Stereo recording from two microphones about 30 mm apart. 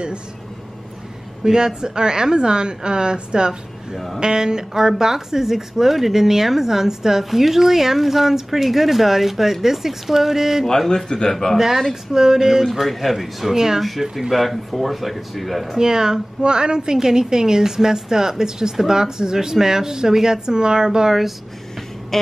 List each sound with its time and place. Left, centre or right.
1.4 s speech: right
10.6 s a man's voice: centre
11.1 s speech: left
11.5 s speech: centre
12.8 s speech: centre
13.5 s speech: centre
13.7 s speech: centre
15.8 s speech: right
22.1 s a man's voice: centre